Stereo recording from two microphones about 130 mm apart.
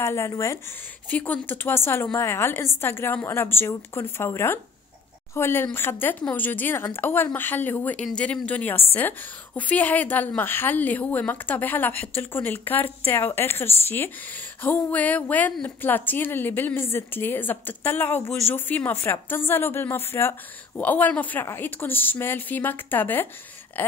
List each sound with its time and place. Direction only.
0.0 s a woman's voice: 20° left (ahead or behind)
1.1 s a woman's voice: 15° left (ahead or behind)